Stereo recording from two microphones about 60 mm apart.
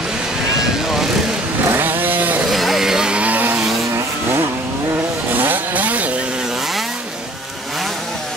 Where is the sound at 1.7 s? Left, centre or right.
Right.